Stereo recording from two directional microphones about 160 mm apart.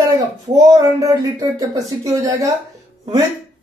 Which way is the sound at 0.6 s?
20° right (ahead or behind).